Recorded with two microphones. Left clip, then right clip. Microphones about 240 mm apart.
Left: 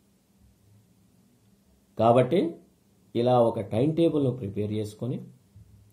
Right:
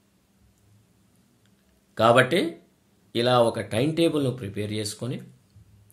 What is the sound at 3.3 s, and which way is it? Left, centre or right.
A man's voice, right.